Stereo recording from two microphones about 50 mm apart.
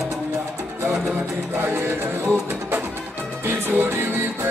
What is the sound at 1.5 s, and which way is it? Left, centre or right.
Music, right.